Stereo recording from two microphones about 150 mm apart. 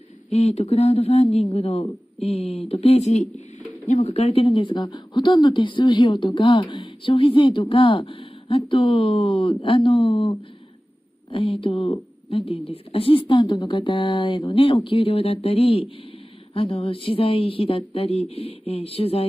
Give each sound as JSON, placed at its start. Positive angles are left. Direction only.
{"t": 0.3, "sound": "speech", "side_deg": 45}